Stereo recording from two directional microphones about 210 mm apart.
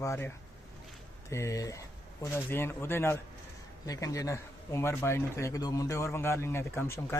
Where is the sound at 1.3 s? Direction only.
15° left (ahead or behind).